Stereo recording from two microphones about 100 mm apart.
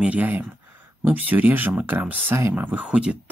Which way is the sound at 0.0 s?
15° right (ahead or behind).